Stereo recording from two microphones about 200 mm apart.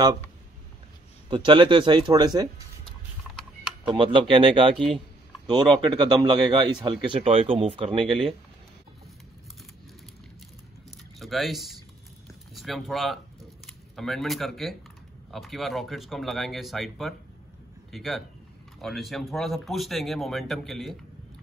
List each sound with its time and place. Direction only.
1.3 s speech: 25° right (ahead or behind)
3.8 s speech: 25° right (ahead or behind)
11.1 s speech: centre (ahead or behind)